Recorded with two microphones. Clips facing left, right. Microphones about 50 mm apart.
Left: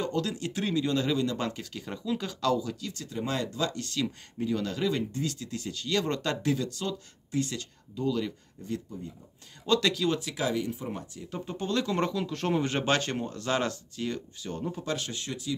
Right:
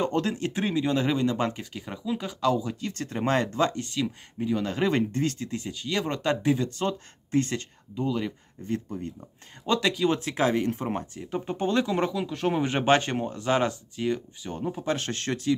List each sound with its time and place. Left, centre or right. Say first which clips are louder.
0.0 s speech: right 4 dB; right
2.9 s speech: right 9 dB; right
3.7 s speech: right 2 dB; centre
4.6 s speech: right 4 dB; right
5.7 s speech: left 1 dB; centre
8.6 s speech: right 4 dB; right
9.7 s speech: right 2 dB; centre
10.1 s speech: right 5 dB; right
11.2 s speech: right 5 dB; right
11.9 s speech: right 2 dB; centre
15.0 s speech: right 7 dB; right